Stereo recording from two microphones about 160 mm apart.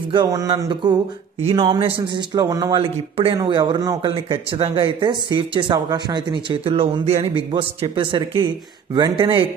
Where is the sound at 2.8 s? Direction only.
35° right (ahead or behind).